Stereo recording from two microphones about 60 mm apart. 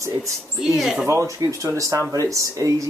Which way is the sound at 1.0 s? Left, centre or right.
Right.